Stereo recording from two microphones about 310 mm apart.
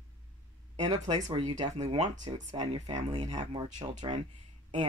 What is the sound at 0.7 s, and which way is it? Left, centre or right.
Speech, centre.